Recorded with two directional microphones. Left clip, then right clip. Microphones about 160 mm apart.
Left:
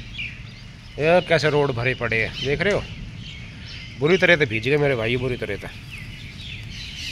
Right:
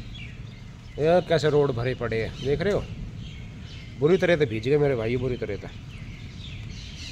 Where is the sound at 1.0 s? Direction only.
5° left (ahead or behind).